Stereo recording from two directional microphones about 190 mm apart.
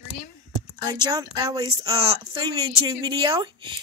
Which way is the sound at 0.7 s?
20° right (ahead or behind).